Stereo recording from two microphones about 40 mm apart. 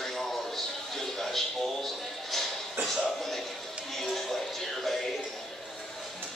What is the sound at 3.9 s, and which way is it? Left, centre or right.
Music, centre.